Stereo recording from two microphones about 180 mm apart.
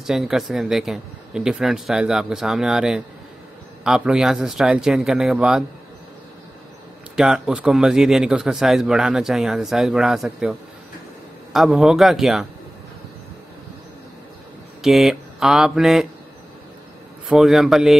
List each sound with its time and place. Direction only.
0.0 s a man's voice: centre (ahead or behind)
7.2 s a man's voice: 5° right (ahead or behind)
11.5 s a man's voice: centre (ahead or behind)
14.8 s speech: centre (ahead or behind)
17.3 s a man's voice: centre (ahead or behind)